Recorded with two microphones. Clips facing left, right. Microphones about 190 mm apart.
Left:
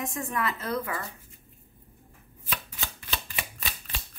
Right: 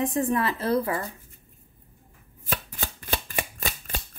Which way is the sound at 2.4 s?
45° right (ahead or behind).